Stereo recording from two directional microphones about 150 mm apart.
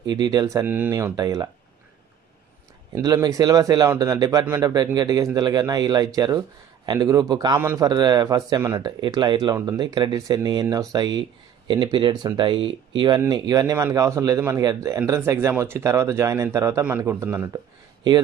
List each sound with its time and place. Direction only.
0.1 s speech: 25° right (ahead or behind)
2.9 s a man's voice: 25° right (ahead or behind)